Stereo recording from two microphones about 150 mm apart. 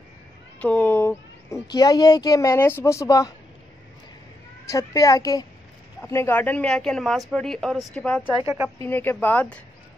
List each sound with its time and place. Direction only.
0.6 s a sound: 10° left (ahead or behind)
1.7 s a woman's voice: 25° left (ahead or behind)
4.6 s a woman's voice: 20° left (ahead or behind); by 8.2 s 5° left (ahead or behind)
8.4 s speech: 20° right (ahead or behind)
8.7 s speech: 15° left (ahead or behind)